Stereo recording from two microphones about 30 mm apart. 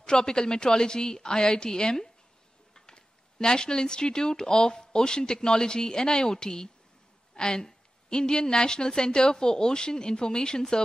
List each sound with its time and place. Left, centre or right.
0.0 s a woman's voice: left